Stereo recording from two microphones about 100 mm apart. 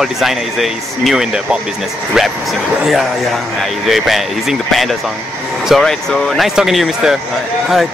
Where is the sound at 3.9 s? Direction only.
Centre (ahead or behind).